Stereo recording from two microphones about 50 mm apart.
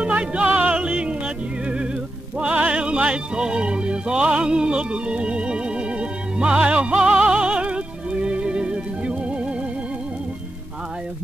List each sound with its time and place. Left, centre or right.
0.0 s music: right